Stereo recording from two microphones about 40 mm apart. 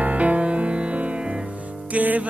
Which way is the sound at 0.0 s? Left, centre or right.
Right.